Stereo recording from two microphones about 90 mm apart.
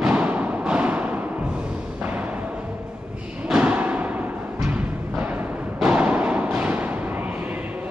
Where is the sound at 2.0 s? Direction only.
15° right (ahead or behind).